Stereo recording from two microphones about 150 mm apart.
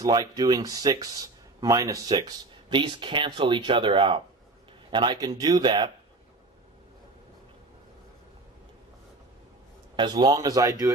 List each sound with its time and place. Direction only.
0.0 s speech: 25° right (ahead or behind)
9.9 s speech: 30° right (ahead or behind)